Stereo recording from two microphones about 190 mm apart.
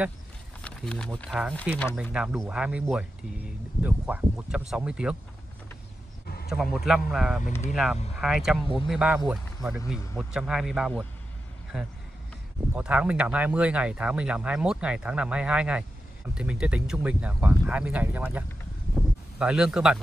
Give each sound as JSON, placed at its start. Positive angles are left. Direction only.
{"t": 0.6, "sound": "speech", "side_deg": 5}
{"t": 6.2, "sound": "a sound", "side_deg": 55}
{"t": 6.5, "sound": "speech", "side_deg": -5}